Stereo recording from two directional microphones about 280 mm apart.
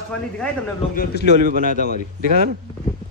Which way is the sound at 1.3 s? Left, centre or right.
Right.